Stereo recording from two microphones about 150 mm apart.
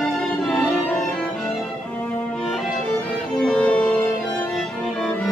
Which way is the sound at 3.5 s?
5° left (ahead or behind).